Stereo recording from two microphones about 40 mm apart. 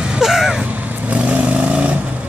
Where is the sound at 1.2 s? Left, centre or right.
Right.